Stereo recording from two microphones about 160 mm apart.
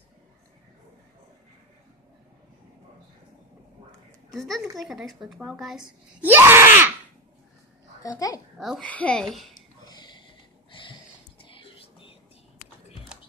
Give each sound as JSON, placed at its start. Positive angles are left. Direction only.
{"t": 4.3, "sound": "a woman's voice", "side_deg": 0}
{"t": 6.2, "sound": "groan", "side_deg": -15}
{"t": 8.0, "sound": "a child's voice", "side_deg": 20}
{"t": 8.5, "sound": "speech", "side_deg": 0}
{"t": 9.8, "sound": "a sound", "side_deg": 25}